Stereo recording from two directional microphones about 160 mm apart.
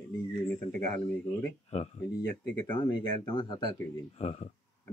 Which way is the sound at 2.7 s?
30° left (ahead or behind).